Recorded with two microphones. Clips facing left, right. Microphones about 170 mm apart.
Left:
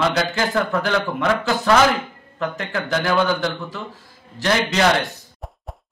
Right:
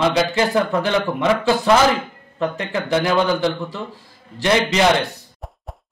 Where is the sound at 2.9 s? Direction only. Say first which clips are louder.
Right 2 dB; 20° right (ahead or behind).